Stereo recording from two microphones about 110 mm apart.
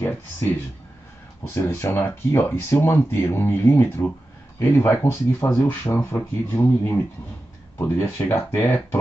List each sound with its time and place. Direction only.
0.0 s a sound: 20° left (ahead or behind)
1.5 s speech: 25° left (ahead or behind)
7.8 s speech: 20° left (ahead or behind)